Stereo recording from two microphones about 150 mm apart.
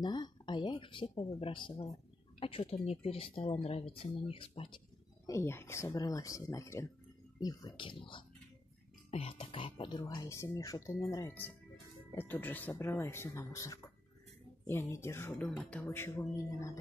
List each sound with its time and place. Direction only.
0.0 s speech: 30° left (ahead or behind)
5.3 s speech: 15° left (ahead or behind)